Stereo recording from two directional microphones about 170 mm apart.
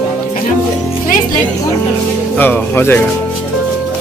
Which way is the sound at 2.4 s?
10° left (ahead or behind).